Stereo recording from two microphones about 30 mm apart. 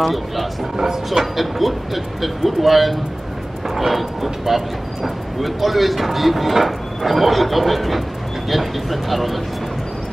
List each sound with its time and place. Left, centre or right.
0.0 s speech: centre
0.7 s speech: centre
1.2 s speech: centre